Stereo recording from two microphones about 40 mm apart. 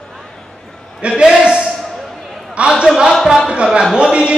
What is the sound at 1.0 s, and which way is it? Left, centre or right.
Speech, right.